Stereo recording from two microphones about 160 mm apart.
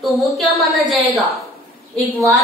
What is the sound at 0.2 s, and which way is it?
A woman's voice, centre (ahead or behind).